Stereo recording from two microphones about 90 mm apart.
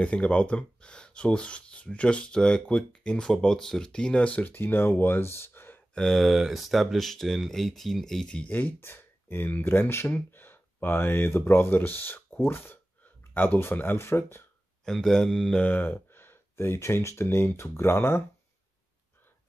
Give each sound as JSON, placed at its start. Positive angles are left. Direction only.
{"t": 0.0, "sound": "speech", "side_deg": 10}
{"t": 5.9, "sound": "speech", "side_deg": 0}
{"t": 14.9, "sound": "speech", "side_deg": 5}
{"t": 15.6, "sound": "speech", "side_deg": 20}